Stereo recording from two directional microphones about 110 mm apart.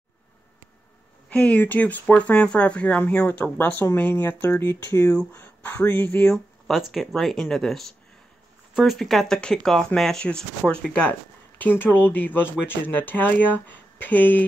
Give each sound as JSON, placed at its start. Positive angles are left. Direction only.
{"t": 1.3, "sound": "speech", "side_deg": 10}
{"t": 6.3, "sound": "speech", "side_deg": 0}